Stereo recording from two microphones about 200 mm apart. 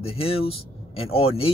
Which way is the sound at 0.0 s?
30° left (ahead or behind).